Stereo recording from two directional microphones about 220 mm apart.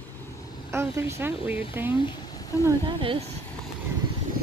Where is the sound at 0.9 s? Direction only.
10° right (ahead or behind).